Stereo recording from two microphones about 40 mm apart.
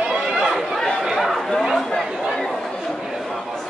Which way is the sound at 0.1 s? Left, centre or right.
Centre.